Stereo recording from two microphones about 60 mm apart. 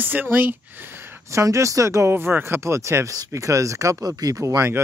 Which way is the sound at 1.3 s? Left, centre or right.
Right.